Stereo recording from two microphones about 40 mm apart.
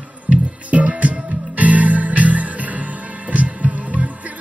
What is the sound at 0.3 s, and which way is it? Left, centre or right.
Music, right.